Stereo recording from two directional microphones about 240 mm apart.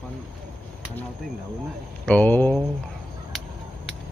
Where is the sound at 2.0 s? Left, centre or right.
Centre.